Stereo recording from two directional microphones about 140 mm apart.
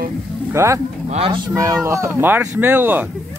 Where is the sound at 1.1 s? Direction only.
40° right (ahead or behind).